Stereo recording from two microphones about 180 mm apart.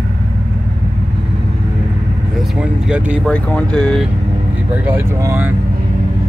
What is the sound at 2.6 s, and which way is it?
Vehicle, 5° right (ahead or behind).